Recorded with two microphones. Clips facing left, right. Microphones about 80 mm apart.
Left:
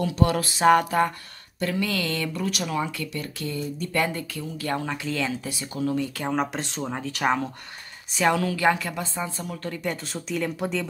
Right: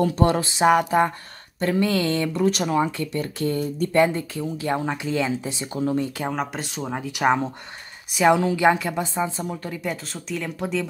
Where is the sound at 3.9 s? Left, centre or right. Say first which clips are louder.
Right 7 dB; right.